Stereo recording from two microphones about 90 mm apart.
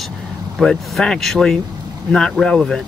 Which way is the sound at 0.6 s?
5° left (ahead or behind).